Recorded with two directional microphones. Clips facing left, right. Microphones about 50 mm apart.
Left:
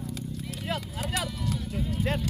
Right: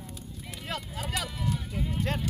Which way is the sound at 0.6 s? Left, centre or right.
Centre.